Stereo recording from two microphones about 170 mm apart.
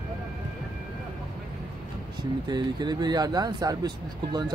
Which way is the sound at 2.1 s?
25° right (ahead or behind).